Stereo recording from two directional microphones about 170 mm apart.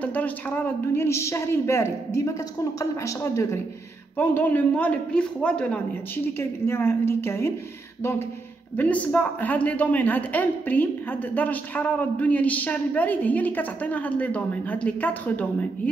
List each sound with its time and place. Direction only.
0.0 s a woman's voice: 10° left (ahead or behind)
8.7 s a woman's voice: 10° left (ahead or behind)